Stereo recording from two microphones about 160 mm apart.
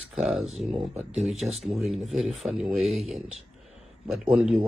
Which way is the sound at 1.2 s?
Centre (ahead or behind).